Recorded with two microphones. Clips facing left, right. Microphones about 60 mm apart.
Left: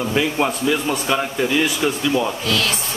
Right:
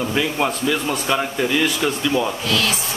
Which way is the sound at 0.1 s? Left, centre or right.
Centre.